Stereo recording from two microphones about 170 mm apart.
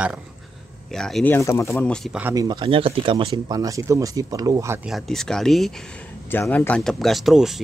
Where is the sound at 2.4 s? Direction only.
25° right (ahead or behind).